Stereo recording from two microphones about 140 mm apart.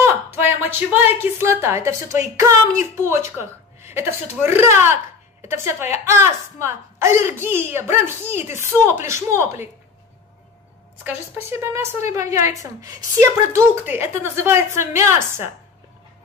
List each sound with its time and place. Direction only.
0.0 s a woman's voice: 15° right (ahead or behind)
11.4 s a woman's voice: 20° right (ahead or behind)